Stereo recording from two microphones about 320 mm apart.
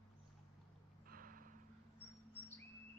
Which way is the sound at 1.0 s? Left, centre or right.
Right.